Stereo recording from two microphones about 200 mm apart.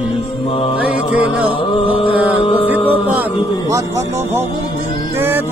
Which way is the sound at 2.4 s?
25° left (ahead or behind).